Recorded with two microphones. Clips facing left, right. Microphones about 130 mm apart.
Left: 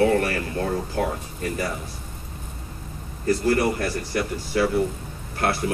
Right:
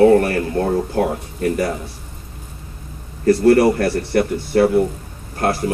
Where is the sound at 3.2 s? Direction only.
70° right (ahead or behind).